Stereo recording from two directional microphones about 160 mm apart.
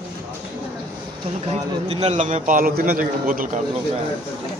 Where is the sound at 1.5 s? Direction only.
40° right (ahead or behind); by 3.6 s 60° right (ahead or behind).